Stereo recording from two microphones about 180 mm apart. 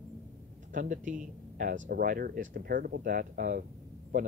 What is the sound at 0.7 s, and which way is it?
Speech, 45° right (ahead or behind).